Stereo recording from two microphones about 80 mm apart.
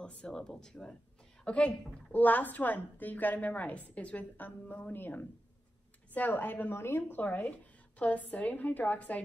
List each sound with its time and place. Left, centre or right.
0.0 s a woman's voice: centre